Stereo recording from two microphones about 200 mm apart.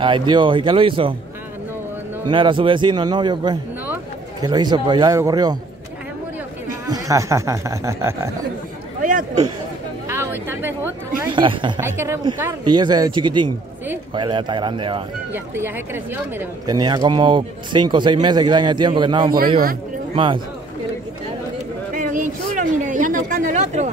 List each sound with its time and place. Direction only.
0.0 s speech: 25° right (ahead or behind)
2.2 s a man's voice: 25° right (ahead or behind)
6.9 s speech: 15° right (ahead or behind)
10.0 s chatter: 10° right (ahead or behind)
11.3 s speech: 25° right (ahead or behind)
11.8 s speech: 10° right (ahead or behind)
15.3 s speech: 10° right (ahead or behind)
21.9 s a sound: 40° right (ahead or behind)